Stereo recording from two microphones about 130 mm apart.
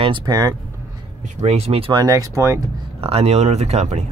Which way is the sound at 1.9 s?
30° right (ahead or behind).